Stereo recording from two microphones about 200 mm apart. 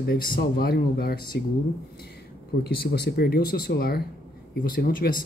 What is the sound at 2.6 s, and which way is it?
Speech, 55° left (ahead or behind).